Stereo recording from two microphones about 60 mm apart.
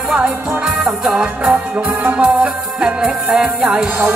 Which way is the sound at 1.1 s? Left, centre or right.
Centre.